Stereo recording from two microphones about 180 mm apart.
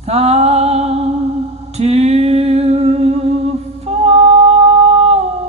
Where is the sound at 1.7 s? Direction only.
35° right (ahead or behind).